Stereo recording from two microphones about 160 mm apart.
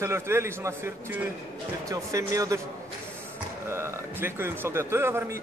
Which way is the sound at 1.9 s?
20° right (ahead or behind).